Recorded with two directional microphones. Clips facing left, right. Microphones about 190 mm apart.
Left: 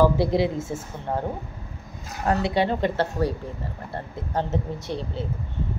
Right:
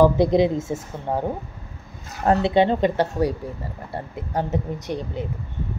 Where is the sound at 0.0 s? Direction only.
20° right (ahead or behind).